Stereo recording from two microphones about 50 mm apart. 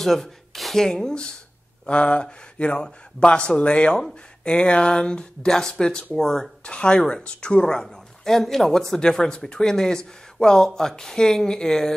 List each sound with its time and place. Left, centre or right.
0.0 s speech: centre